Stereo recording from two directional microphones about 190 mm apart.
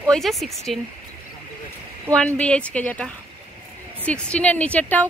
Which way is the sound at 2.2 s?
5° left (ahead or behind).